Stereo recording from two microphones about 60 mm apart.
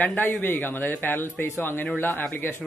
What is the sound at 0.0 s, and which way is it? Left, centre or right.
Speech, left.